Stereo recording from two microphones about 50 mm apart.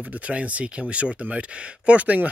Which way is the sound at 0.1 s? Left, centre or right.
Right.